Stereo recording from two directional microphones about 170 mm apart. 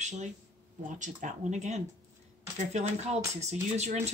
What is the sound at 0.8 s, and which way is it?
Speech, 50° right (ahead or behind).